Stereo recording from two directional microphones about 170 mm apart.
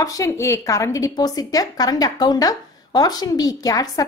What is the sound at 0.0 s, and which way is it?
A woman's voice, 20° left (ahead or behind).